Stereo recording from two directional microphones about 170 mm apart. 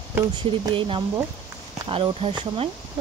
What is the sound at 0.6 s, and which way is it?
Speech, 30° right (ahead or behind).